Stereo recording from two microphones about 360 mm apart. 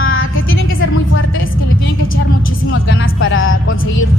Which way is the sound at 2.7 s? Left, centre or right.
Left.